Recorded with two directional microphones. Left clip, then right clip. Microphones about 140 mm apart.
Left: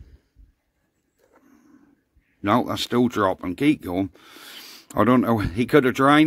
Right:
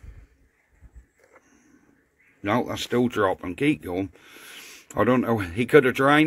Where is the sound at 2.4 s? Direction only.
60° left (ahead or behind).